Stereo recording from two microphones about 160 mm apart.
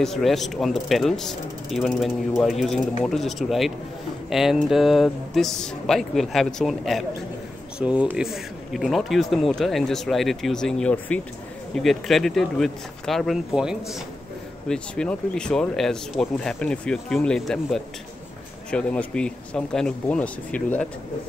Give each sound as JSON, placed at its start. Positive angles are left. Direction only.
{"t": 0.0, "sound": "speech", "side_deg": 0}